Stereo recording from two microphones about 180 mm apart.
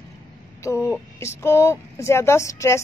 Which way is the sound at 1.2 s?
15° left (ahead or behind).